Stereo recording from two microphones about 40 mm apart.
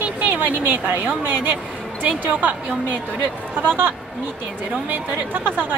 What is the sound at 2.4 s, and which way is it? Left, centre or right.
Speech, right.